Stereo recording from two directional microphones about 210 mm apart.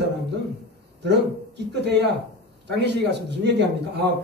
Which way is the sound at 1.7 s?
55° right (ahead or behind).